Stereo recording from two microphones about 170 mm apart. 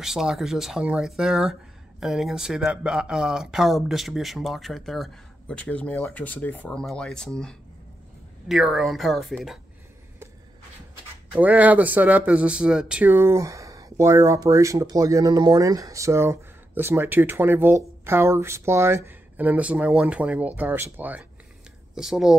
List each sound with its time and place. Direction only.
0.0 s speech: centre (ahead or behind)
11.3 s speech: 10° right (ahead or behind)